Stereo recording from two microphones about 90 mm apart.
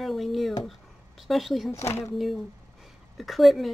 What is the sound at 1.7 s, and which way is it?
Speech, 30° left (ahead or behind).